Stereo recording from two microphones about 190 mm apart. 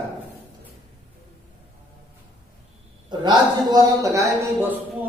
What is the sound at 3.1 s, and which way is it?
A man's voice, 20° right (ahead or behind).